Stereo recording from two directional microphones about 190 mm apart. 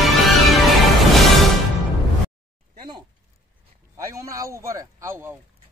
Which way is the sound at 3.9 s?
15° right (ahead or behind).